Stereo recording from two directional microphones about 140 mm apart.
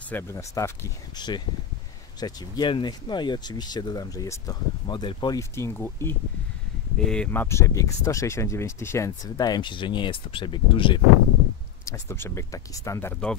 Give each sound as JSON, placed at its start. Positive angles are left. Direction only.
{"t": 0.1, "sound": "speech", "side_deg": 20}
{"t": 1.1, "sound": "speech", "side_deg": 30}
{"t": 5.4, "sound": "speech", "side_deg": 20}
{"t": 7.0, "sound": "speech", "side_deg": 5}
{"t": 11.8, "sound": "speech", "side_deg": 20}